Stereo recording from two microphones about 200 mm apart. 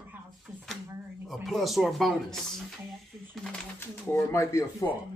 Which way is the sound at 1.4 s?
Centre (ahead or behind).